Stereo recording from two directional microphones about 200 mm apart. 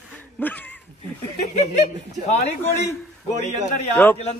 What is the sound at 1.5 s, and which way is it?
Speech, 35° left (ahead or behind).